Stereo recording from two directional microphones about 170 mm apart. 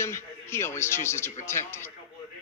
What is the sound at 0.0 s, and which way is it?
A man's voice, 15° left (ahead or behind).